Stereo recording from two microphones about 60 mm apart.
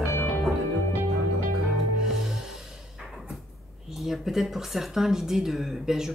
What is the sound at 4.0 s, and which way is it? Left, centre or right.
Speech, centre.